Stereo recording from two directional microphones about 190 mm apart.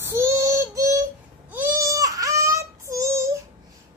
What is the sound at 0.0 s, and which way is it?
Child singing, 15° right (ahead or behind).